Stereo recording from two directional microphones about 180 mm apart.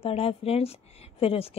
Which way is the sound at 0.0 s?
30° left (ahead or behind).